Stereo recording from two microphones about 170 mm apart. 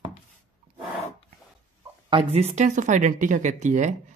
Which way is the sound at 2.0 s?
35° right (ahead or behind).